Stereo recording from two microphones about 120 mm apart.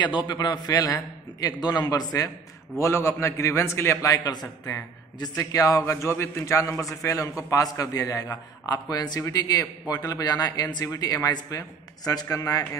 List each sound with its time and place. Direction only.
0.3 s a man's voice: 35° left (ahead or behind)